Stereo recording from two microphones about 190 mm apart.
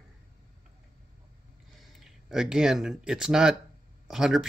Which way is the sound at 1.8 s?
Centre (ahead or behind).